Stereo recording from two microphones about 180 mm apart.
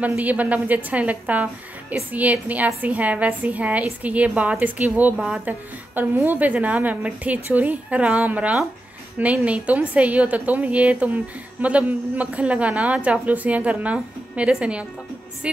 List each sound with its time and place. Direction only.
0.0 s a woman's voice: 10° right (ahead or behind)